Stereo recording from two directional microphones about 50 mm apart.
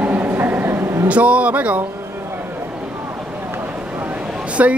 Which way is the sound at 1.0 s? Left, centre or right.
Right.